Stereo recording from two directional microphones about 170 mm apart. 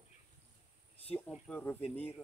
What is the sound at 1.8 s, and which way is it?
Speech, 35° left (ahead or behind).